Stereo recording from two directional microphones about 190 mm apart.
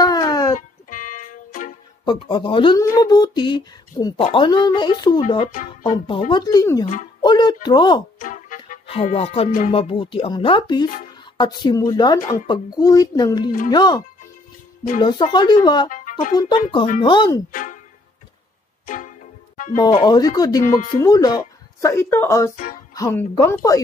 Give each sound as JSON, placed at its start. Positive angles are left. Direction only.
{"t": 0.0, "sound": "music", "side_deg": 20}
{"t": 0.6, "sound": "music", "side_deg": 45}
{"t": 2.0, "sound": "speech", "side_deg": 25}
{"t": 5.5, "sound": "speech", "side_deg": 45}
{"t": 5.9, "sound": "speech", "side_deg": 25}
{"t": 7.2, "sound": "music", "side_deg": 20}
{"t": 7.6, "sound": "speech", "side_deg": 25}
{"t": 8.2, "sound": "music", "side_deg": 45}
{"t": 8.8, "sound": "speech", "side_deg": 30}
{"t": 15.9, "sound": "music", "side_deg": 45}
{"t": 16.3, "sound": "speech", "side_deg": 25}
{"t": 17.5, "sound": "speech", "side_deg": 45}
{"t": 20.1, "sound": "a woman's voice", "side_deg": 20}